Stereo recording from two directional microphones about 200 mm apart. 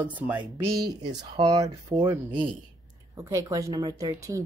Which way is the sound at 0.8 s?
20° right (ahead or behind).